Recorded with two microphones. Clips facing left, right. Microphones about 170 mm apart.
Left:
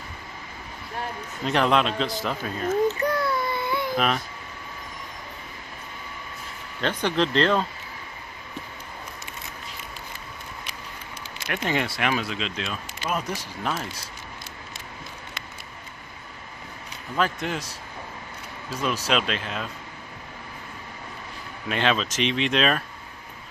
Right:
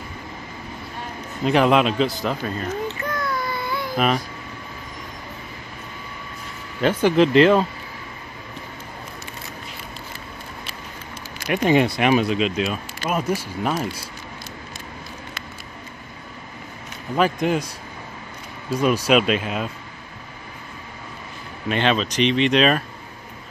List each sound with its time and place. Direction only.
1.4 s a man's voice: 5° right (ahead or behind)
2.9 s baby cry: 35° left (ahead or behind)
3.9 s speech: 5° right (ahead or behind)
6.8 s speech: 5° right (ahead or behind)
11.5 s speech: 20° right (ahead or behind)
17.2 s speech: 15° right (ahead or behind)
18.7 s speech: 10° right (ahead or behind)
21.6 s a man's voice: centre (ahead or behind)